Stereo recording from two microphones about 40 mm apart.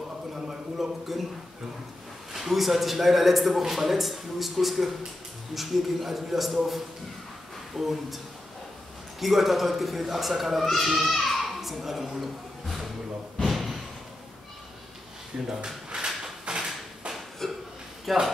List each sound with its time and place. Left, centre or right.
0.3 s a sound: centre
2.3 s speech: centre
9.2 s speech: centre
13.4 s slam: centre
15.4 s drawer open or close: centre
17.4 s a sound: centre
18.1 s speech: centre